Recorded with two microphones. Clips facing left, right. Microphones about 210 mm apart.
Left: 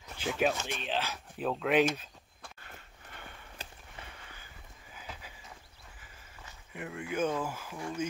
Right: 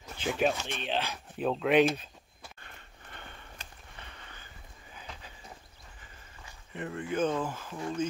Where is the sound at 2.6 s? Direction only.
5° left (ahead or behind).